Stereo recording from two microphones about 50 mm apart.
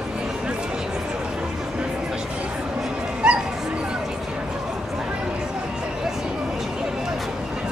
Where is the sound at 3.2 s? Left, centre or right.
Centre.